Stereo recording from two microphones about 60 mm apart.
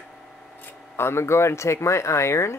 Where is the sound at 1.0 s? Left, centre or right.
Left.